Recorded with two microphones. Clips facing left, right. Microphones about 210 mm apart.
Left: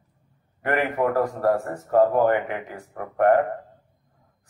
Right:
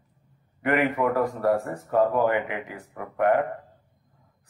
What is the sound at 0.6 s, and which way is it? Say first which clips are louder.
Speech: even; 40° left (ahead or behind).